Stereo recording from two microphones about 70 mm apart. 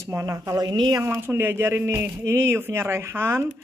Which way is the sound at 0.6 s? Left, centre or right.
Right.